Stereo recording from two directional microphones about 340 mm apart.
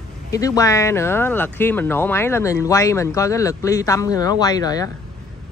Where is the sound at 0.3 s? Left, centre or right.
Centre.